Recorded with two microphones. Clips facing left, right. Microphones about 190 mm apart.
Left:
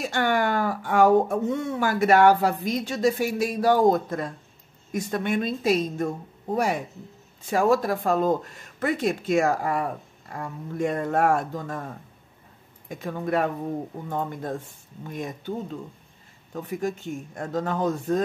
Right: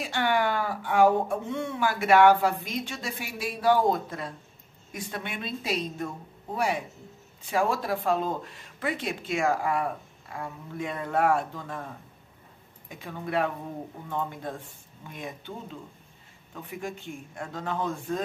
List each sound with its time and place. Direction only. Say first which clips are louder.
0.0 s speech: left 2 dB; 45° left (ahead or behind)
12.8 s speech: left 7 dB; 45° left (ahead or behind)